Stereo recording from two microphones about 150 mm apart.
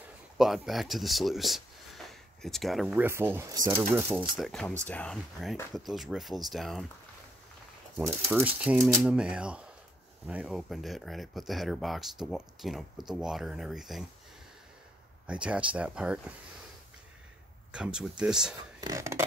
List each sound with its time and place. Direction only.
0.4 s speech: centre (ahead or behind)
3.1 s speech: 15° right (ahead or behind)
4.4 s speech: 5° left (ahead or behind)
8.5 s speech: 10° right (ahead or behind)
15.2 s speech: 5° right (ahead or behind)
17.6 s speech: 5° right (ahead or behind)
18.8 s a sound: 20° right (ahead or behind)